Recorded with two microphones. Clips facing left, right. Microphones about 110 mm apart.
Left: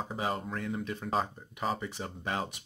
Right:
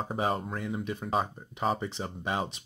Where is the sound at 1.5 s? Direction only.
25° right (ahead or behind).